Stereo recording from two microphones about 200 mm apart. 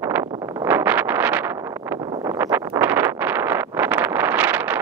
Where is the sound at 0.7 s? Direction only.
10° right (ahead or behind).